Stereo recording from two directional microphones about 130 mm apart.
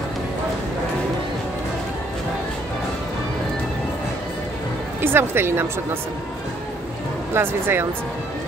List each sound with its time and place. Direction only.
5.0 s a woman's voice: 15° right (ahead or behind)
7.3 s a woman's voice: 15° right (ahead or behind)